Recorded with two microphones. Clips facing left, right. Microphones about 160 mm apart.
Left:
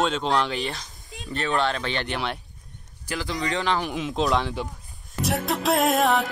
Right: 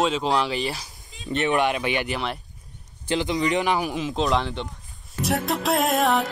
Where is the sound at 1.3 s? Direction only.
15° right (ahead or behind).